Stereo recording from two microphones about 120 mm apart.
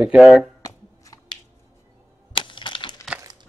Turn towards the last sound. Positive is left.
turn(degrees=-35)  # may be behind; listen again after turning